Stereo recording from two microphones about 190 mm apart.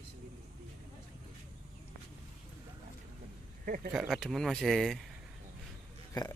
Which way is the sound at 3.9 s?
Centre (ahead or behind).